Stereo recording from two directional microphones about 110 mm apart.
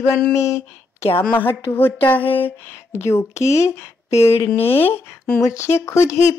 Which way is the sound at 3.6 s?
25° left (ahead or behind).